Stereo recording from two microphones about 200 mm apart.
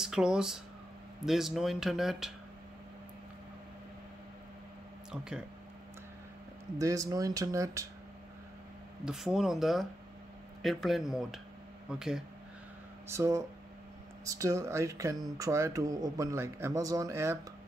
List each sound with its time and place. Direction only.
0.0 s speech: 5° right (ahead or behind)
6.8 s a man's voice: 15° right (ahead or behind)
9.0 s speech: centre (ahead or behind)
13.1 s a man's voice: 15° right (ahead or behind)